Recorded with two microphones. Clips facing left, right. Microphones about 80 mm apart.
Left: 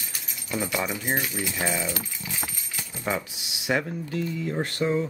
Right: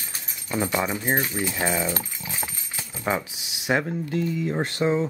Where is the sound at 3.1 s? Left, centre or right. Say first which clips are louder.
Right 3 dB; right.